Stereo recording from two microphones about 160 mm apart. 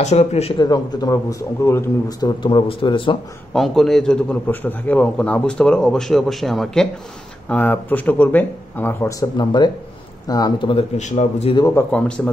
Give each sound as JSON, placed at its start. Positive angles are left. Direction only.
{"t": 0.0, "sound": "speech", "side_deg": 45}
{"t": 0.6, "sound": "speech", "side_deg": 25}
{"t": 3.5, "sound": "a man's voice", "side_deg": 0}
{"t": 11.0, "sound": "speech", "side_deg": 45}
{"t": 11.5, "sound": "speech", "side_deg": 20}
{"t": 11.9, "sound": "speech", "side_deg": 10}